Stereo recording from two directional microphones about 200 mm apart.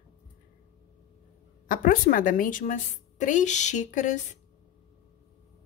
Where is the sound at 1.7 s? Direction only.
45° left (ahead or behind).